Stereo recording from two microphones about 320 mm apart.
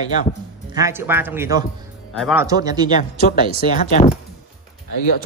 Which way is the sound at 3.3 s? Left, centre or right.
Left.